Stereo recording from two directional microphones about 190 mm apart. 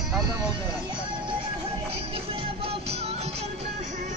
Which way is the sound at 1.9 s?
30° right (ahead or behind).